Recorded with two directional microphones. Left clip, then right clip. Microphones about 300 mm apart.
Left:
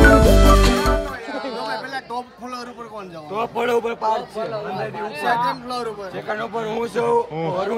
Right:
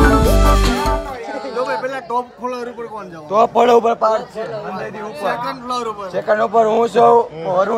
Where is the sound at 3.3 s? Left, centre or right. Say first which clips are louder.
Right 10 dB; right.